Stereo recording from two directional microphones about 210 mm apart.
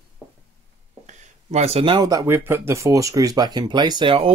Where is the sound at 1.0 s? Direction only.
30° right (ahead or behind).